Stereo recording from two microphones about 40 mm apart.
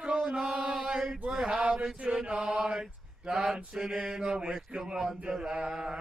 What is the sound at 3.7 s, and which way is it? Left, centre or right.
Mantra, centre.